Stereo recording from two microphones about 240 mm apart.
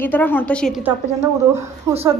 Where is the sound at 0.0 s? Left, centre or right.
Centre.